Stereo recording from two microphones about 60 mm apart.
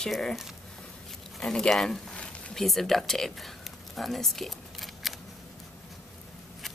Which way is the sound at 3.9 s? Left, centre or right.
Centre.